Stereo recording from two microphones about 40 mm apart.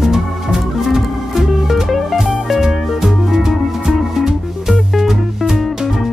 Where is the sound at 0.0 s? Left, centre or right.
Centre.